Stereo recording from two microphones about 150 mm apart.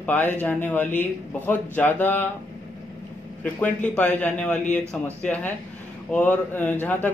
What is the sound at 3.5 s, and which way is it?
Speech, 10° left (ahead or behind).